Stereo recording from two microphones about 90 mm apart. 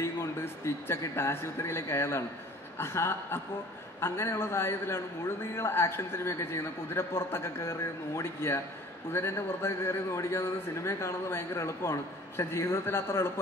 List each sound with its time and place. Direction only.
0.0 s a man's voice: 30° left (ahead or behind)